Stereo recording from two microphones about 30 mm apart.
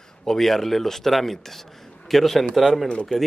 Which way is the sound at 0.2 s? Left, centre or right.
Centre.